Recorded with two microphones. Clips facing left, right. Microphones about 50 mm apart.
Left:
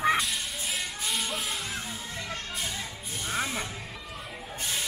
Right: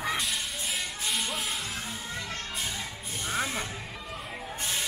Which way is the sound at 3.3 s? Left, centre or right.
Centre.